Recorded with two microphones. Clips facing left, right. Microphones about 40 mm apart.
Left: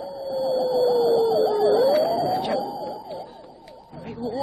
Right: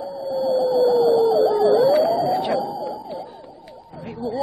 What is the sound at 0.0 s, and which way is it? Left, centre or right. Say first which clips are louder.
Music: right 3 dB; centre.